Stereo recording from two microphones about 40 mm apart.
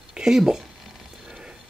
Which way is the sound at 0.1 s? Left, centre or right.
Centre.